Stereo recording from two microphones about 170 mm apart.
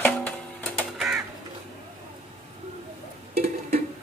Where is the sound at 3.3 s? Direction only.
40° right (ahead or behind).